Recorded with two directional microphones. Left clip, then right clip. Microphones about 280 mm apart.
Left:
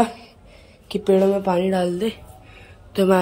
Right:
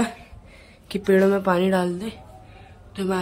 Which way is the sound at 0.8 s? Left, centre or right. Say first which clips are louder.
Left 1 dB; centre.